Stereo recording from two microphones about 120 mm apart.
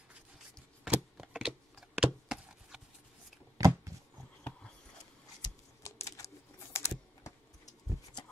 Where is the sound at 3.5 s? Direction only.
25° right (ahead or behind).